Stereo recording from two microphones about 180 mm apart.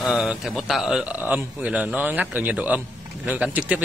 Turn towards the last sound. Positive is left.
turn(degrees=-10)  # may be behind; listen again after turning